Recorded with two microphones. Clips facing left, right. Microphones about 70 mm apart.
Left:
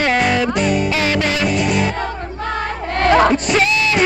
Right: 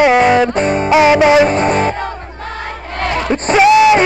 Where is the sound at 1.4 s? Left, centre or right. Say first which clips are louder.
Right 5 dB; right.